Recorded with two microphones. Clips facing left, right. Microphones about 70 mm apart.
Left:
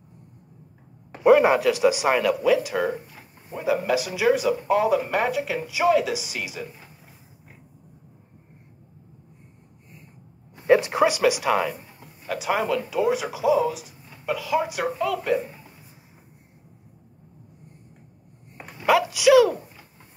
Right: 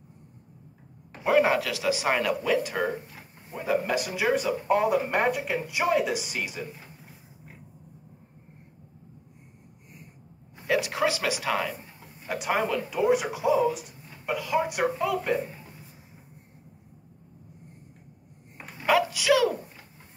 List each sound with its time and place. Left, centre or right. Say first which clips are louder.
1.2 s speech: left 6 dB; centre
2.0 s speech: left 5 dB; centre
10.7 s speech: left 7 dB; left; by 11.7 s centre
12.4 s speech: left 3 dB; centre
18.9 s a sound: left 5 dB; centre